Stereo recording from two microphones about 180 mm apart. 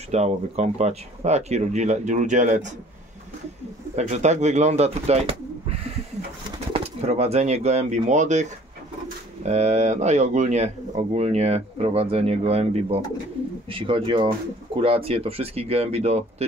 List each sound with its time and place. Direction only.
0.1 s speech: 35° right (ahead or behind)
3.9 s speech: 40° right (ahead or behind)
6.7 s speech: 35° right (ahead or behind)